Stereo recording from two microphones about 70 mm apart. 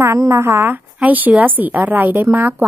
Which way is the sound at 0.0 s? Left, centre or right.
Right.